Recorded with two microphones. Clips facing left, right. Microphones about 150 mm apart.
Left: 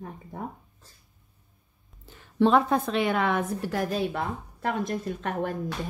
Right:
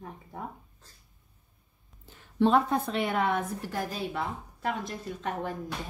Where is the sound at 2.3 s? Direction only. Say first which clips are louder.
Left 3 dB; 90° left; by 5.5 s 60° left (ahead or behind).